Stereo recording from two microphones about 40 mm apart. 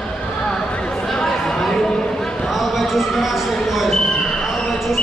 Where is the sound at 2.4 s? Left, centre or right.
Centre.